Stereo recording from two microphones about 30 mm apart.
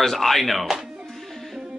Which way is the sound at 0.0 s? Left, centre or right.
Centre.